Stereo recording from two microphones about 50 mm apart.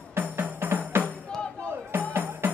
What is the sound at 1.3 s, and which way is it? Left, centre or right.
Music, centre.